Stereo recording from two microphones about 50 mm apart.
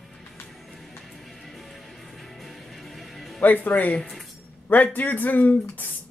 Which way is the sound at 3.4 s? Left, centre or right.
Left.